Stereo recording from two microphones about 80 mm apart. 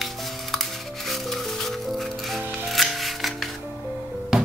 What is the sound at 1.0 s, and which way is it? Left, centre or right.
Music, centre.